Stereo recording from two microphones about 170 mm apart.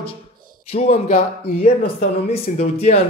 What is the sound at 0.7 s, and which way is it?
Speech, 40° left (ahead or behind).